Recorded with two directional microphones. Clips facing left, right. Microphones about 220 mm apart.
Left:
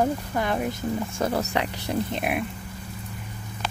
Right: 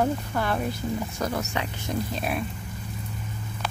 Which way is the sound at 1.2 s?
35° left (ahead or behind).